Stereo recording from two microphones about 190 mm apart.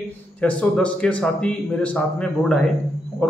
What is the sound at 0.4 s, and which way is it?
A man's voice, 5° left (ahead or behind).